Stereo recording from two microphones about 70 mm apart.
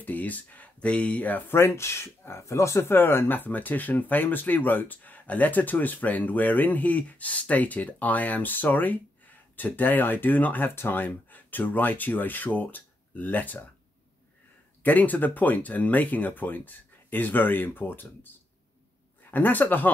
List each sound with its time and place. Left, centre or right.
0.0 s speech: left
1.5 s speech: left
14.9 s speech: left
19.3 s speech: left